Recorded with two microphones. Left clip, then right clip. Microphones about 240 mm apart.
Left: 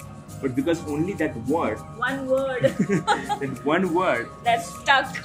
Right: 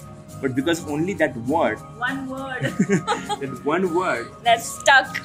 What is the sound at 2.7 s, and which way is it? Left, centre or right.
Speech, right.